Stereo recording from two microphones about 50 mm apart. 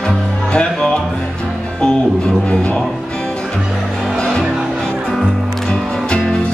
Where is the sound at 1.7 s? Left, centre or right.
Centre.